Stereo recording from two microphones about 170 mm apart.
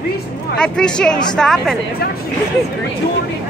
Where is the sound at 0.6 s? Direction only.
5° left (ahead or behind).